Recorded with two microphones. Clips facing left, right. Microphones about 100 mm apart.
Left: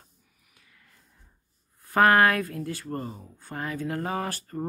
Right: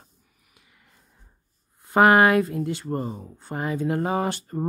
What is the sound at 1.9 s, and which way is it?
Speech, 20° right (ahead or behind).